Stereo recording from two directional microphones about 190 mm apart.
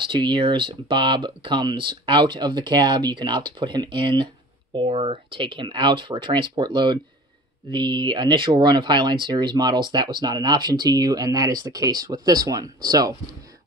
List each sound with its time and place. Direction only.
0.1 s speech: 25° right (ahead or behind)